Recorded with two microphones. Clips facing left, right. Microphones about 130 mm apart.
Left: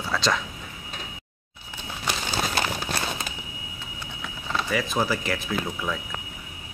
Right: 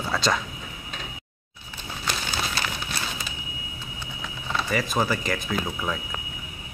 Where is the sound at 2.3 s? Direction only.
40° left (ahead or behind).